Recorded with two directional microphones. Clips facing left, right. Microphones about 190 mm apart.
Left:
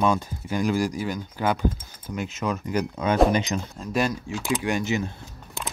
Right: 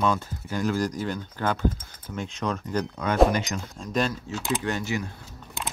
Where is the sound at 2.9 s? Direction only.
20° left (ahead or behind).